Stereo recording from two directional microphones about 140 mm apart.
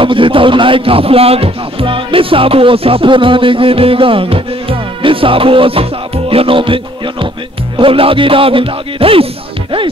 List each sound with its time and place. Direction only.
0.0 s a man's voice: 40° right (ahead or behind)